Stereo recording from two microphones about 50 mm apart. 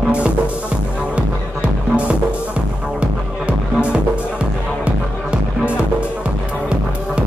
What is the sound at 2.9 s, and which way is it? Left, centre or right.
Music, right.